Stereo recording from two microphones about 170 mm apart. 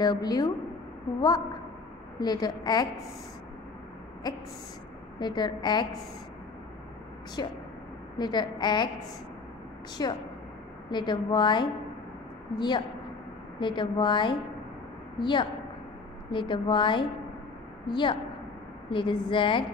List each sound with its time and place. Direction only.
0.0 s a woman's voice: 25° left (ahead or behind)
2.1 s a woman's voice: 25° left (ahead or behind)
5.2 s a woman's voice: 25° left (ahead or behind)
7.4 s a woman's voice: 25° left (ahead or behind)
10.0 s a woman's voice: 20° left (ahead or behind)